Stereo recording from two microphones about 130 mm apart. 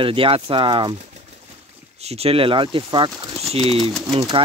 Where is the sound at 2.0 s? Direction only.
50° right (ahead or behind).